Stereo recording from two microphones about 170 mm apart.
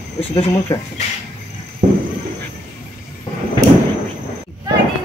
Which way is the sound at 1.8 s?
50° right (ahead or behind).